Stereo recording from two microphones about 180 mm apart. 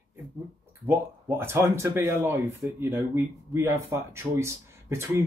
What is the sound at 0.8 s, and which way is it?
Speech, 15° right (ahead or behind).